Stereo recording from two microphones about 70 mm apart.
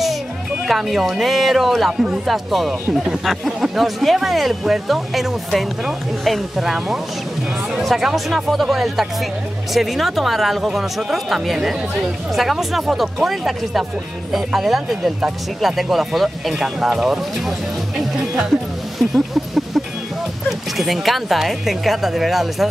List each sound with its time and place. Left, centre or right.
0.7 s a man's voice: centre
18.9 s a sound: centre
20.4 s a man's voice: centre